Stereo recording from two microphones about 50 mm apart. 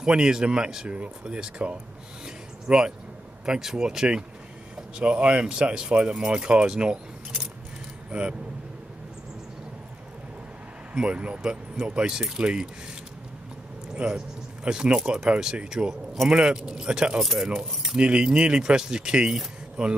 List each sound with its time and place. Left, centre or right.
0.0 s speech: centre
2.2 s a sound: centre
3.4 s speech: centre
11.0 s speech: right
13.9 s speech: right
17.3 s speech: centre
17.9 s speech: centre